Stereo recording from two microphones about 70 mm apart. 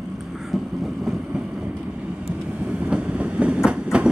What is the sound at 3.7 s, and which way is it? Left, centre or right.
Train, centre.